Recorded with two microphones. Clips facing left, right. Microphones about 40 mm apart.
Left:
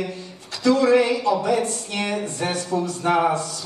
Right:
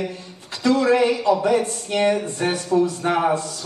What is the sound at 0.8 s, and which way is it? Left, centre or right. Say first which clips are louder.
Speech: even; centre.